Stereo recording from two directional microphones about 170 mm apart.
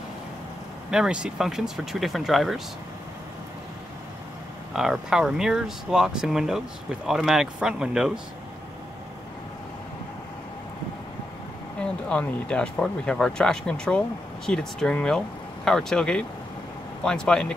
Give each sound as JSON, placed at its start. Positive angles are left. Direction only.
{"t": 0.8, "sound": "speech", "side_deg": -5}
{"t": 4.7, "sound": "speech", "side_deg": 0}
{"t": 11.8, "sound": "speech", "side_deg": 5}